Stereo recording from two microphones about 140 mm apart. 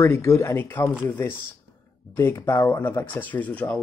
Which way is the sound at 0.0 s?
20° left (ahead or behind).